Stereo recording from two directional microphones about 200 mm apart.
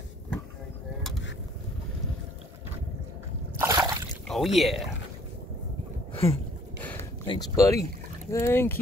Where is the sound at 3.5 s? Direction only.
15° right (ahead or behind).